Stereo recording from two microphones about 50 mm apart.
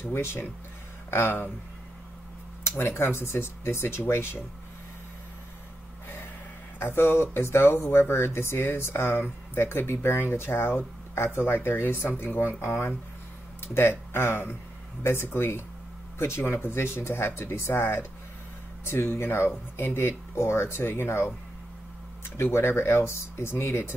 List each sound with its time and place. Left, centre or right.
0.0 s speech: left
1.1 s speech: left
2.7 s speech: left
6.8 s speech: left
12.6 s speech: left